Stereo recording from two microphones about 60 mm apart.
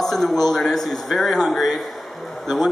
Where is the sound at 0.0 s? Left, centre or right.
Centre.